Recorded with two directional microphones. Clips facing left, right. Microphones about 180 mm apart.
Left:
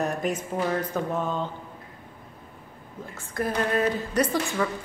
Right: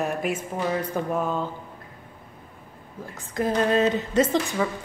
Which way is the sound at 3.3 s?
20° right (ahead or behind).